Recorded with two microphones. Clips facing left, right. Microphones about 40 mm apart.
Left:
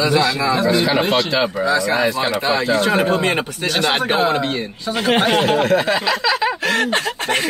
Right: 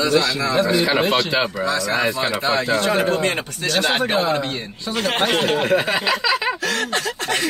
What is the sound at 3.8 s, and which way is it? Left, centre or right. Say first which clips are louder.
Speech: left 2 dB; centre.